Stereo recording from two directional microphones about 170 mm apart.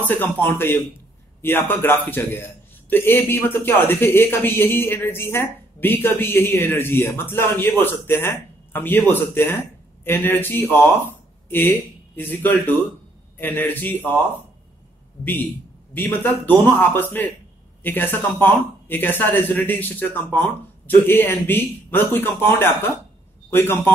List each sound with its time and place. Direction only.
0.2 s a man's voice: 15° left (ahead or behind)
11.1 s a sound: 10° left (ahead or behind)
12.2 s a man's voice: 10° left (ahead or behind)
15.9 s a man's voice: 10° left (ahead or behind)